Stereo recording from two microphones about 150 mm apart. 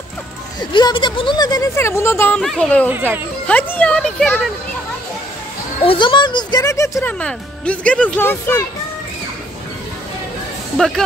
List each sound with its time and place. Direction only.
0.6 s speech: 30° left (ahead or behind)
2.4 s speech: 5° left (ahead or behind)
2.9 s speech: 15° right (ahead or behind)
3.4 s speech: 10° left (ahead or behind)
5.9 s speech: 30° left (ahead or behind)
7.2 s speech: 10° left (ahead or behind)